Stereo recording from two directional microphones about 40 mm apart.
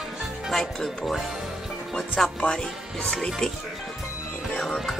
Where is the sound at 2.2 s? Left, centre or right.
Centre.